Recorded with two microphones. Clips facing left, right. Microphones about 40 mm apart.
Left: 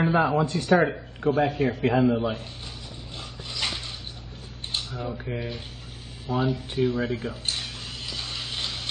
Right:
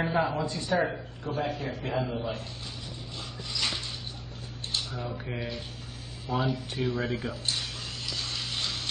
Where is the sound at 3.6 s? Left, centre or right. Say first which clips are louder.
Left 2 dB; left.